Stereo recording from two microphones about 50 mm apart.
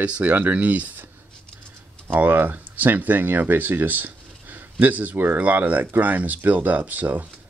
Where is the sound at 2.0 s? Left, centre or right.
Right.